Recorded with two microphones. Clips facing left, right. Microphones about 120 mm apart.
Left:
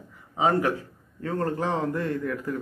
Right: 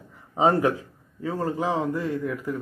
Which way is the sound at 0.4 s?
25° right (ahead or behind).